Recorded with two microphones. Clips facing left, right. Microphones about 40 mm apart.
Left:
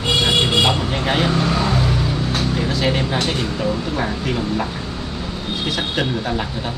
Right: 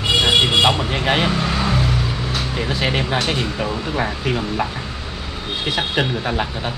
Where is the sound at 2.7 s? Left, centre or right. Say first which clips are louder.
Left 1 dB; right.